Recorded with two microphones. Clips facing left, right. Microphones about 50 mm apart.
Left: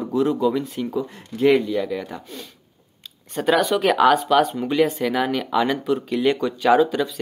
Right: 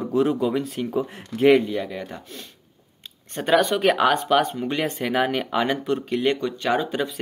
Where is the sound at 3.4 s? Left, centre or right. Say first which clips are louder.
Even; centre.